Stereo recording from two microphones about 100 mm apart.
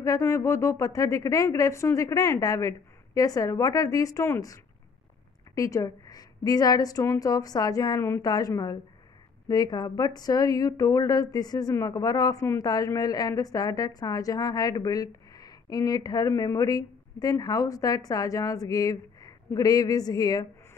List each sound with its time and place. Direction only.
0.0 s a woman's voice: 30° left (ahead or behind)
5.5 s a woman's voice: 35° left (ahead or behind)